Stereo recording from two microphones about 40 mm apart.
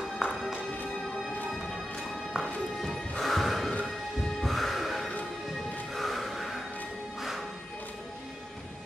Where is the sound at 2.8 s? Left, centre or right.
Centre.